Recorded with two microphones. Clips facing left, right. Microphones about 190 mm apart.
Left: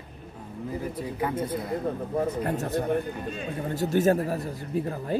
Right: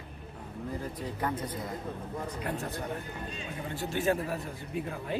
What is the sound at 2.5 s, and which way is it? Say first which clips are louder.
Speech: left 8 dB; 40° left (ahead or behind).